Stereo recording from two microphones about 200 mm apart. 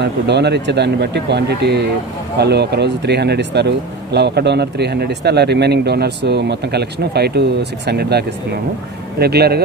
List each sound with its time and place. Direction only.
0.0 s speech: 60° right (ahead or behind)